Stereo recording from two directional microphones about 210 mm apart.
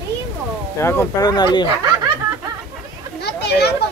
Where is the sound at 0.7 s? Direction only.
15° left (ahead or behind).